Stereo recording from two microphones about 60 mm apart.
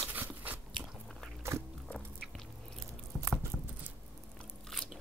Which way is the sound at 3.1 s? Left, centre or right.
Centre.